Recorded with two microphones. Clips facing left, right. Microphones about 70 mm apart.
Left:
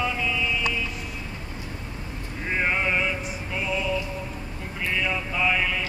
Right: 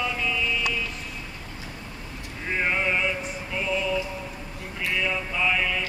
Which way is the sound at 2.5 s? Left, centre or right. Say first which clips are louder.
Even; centre.